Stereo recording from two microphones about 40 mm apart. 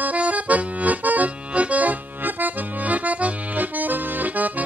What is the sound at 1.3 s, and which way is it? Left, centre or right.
Accordion, right.